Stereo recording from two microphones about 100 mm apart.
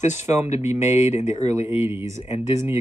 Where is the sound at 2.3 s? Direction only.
30° right (ahead or behind).